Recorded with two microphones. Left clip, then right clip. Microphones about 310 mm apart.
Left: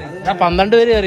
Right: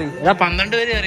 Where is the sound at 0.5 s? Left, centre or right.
Centre.